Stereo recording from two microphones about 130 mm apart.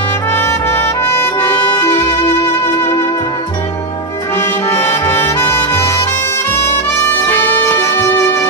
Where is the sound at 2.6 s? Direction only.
20° left (ahead or behind).